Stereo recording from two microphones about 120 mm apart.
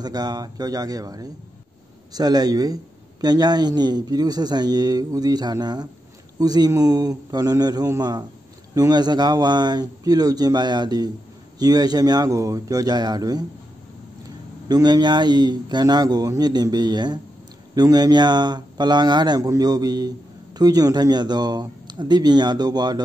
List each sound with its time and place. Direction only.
0.0 s a man's voice: 35° right (ahead or behind)
14.7 s a man's voice: 35° right (ahead or behind)